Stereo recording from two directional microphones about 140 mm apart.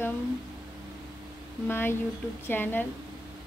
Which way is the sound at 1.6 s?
15° left (ahead or behind).